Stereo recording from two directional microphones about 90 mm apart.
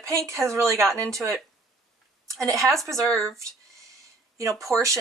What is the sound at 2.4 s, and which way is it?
Speech, 35° right (ahead or behind).